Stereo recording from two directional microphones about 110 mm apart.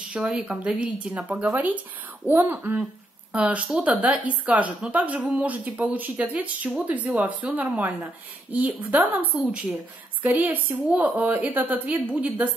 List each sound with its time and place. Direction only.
0.1 s a woman's voice: 10° right (ahead or behind)